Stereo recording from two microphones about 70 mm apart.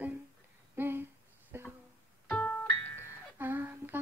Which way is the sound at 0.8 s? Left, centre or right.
Right.